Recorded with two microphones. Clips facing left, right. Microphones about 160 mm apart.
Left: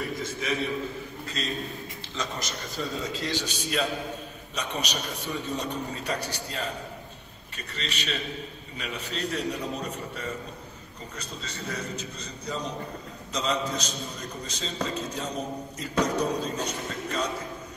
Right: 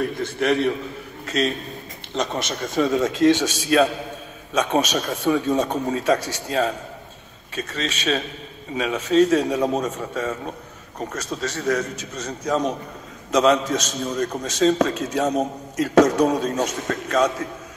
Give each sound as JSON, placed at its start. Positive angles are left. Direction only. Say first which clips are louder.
{"t": 0.2, "sound": "a man's voice", "louder": "right 12 dB", "side_deg": -70}